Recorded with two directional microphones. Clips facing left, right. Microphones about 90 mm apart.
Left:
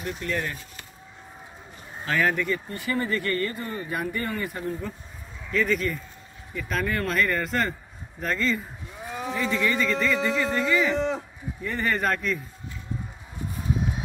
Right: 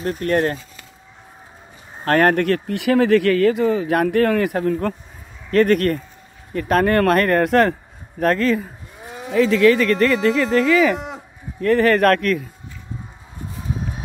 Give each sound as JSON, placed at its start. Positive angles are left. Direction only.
{"t": 0.0, "sound": "speech", "side_deg": -50}
{"t": 2.0, "sound": "speech", "side_deg": -55}
{"t": 5.5, "sound": "speech", "side_deg": -65}
{"t": 9.3, "sound": "a man's voice", "side_deg": -90}